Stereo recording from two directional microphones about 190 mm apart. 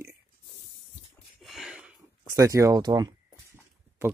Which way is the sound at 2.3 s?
15° right (ahead or behind).